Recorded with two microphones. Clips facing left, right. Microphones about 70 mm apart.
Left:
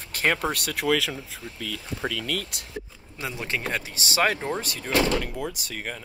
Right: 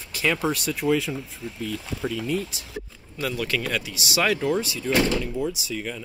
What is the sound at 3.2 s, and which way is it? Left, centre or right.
Speech, left.